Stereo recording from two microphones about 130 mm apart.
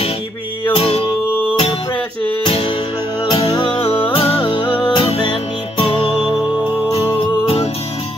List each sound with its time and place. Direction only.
0.7 s music: 50° left (ahead or behind)
2.4 s music: 40° left (ahead or behind)